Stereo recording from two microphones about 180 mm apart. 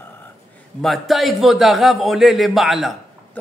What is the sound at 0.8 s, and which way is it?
A man's voice, centre (ahead or behind).